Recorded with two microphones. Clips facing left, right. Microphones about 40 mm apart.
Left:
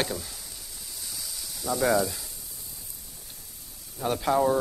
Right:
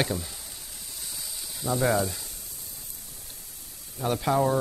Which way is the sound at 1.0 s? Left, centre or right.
Centre.